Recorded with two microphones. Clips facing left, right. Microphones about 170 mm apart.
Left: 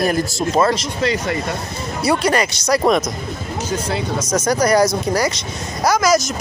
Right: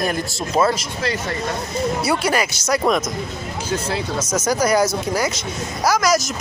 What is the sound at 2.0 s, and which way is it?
Speech, 5° right (ahead or behind).